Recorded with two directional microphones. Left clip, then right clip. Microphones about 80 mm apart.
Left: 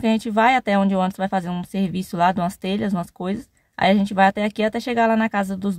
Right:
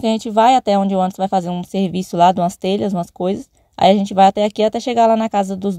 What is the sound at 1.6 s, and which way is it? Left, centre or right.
Speech, right.